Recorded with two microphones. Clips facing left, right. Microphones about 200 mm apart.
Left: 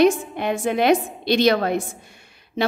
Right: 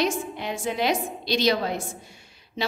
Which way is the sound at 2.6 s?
55° left (ahead or behind).